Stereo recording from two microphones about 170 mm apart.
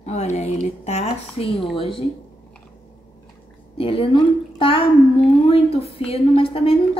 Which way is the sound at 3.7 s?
30° left (ahead or behind).